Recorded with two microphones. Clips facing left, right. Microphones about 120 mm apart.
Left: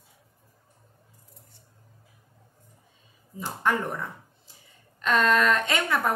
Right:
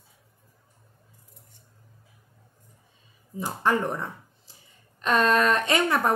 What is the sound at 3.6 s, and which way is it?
Speech, 30° right (ahead or behind).